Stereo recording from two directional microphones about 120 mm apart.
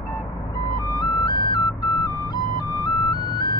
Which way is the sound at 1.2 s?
40° left (ahead or behind).